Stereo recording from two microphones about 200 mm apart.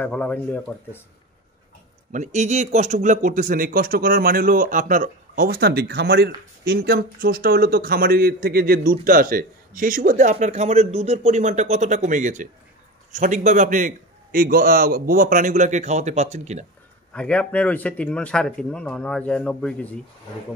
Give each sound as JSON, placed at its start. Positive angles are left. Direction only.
{"t": 0.0, "sound": "speech", "side_deg": 5}
{"t": 2.1, "sound": "a man's voice", "side_deg": -35}
{"t": 17.1, "sound": "speech", "side_deg": 5}